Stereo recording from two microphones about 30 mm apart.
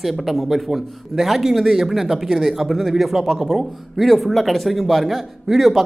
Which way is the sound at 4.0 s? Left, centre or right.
Centre.